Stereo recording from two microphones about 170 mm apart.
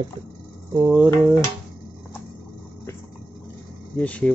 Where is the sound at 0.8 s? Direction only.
10° right (ahead or behind).